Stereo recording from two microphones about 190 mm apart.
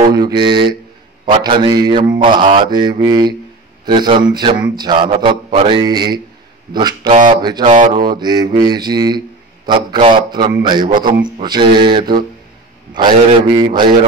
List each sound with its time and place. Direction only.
0.1 s a man's voice: 25° right (ahead or behind)
7.7 s speech: 40° right (ahead or behind)
8.1 s a man's voice: 25° right (ahead or behind)